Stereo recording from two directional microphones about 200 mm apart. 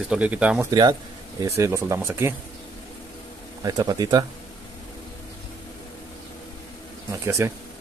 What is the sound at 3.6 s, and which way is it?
Speech, 20° right (ahead or behind).